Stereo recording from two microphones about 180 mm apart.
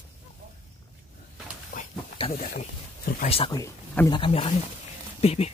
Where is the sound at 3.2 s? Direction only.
30° left (ahead or behind).